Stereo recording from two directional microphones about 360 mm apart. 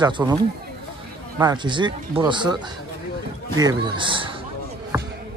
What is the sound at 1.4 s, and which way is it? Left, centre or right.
Speech, centre.